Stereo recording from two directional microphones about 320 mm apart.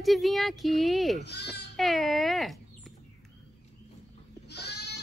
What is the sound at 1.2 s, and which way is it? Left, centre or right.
Speech, left.